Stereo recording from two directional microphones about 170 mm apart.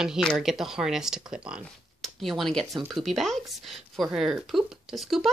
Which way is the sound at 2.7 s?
20° right (ahead or behind).